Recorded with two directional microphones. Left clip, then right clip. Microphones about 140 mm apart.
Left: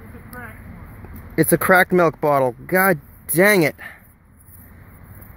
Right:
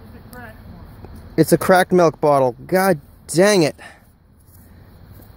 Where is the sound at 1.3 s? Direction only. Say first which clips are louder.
Right 1 dB; 40° right (ahead or behind).